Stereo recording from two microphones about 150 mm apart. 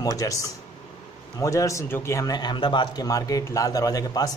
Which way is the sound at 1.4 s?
20° left (ahead or behind).